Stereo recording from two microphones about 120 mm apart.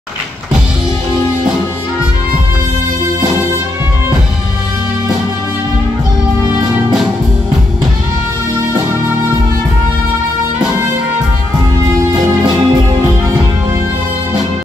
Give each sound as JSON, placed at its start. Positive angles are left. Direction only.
{"t": 12.1, "sound": "music", "side_deg": -35}